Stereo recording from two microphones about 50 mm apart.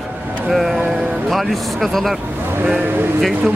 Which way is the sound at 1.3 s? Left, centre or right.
Centre.